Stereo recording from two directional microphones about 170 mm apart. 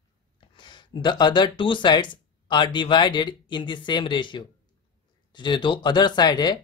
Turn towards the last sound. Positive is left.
turn(degrees=25)  # may be behind; listen again after turning